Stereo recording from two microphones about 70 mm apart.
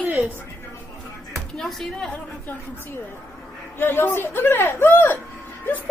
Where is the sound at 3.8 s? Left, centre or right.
Left.